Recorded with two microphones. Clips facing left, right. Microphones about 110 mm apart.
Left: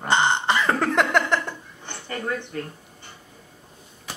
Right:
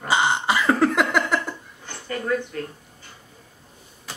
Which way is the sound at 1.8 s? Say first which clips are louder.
Right 1 dB; 25° left (ahead or behind).